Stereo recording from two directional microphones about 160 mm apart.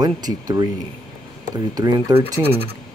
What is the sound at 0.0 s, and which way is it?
Speech, 25° right (ahead or behind).